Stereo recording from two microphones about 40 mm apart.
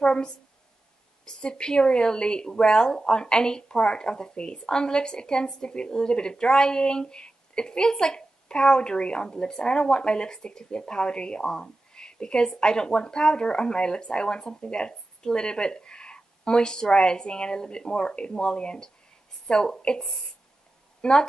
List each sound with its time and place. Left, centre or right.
0.0 s a sound: left
1.2 s speech: left
21.0 s a woman's voice: left